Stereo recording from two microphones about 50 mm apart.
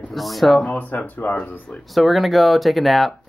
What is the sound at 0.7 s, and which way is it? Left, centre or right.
Speech, left.